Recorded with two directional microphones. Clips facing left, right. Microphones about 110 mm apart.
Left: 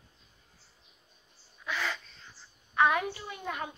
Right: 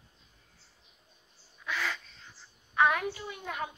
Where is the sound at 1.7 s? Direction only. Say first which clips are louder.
Even; centre (ahead or behind).